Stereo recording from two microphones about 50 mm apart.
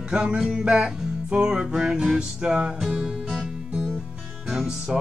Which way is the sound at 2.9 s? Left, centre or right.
Centre.